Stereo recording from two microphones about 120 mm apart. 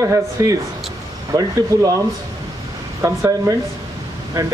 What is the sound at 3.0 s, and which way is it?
Speech, 25° right (ahead or behind).